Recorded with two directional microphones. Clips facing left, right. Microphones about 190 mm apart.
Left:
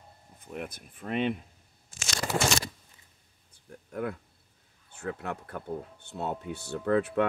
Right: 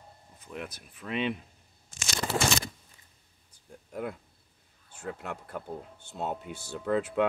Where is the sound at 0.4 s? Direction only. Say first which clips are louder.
Left 2 dB; 50° left (ahead or behind).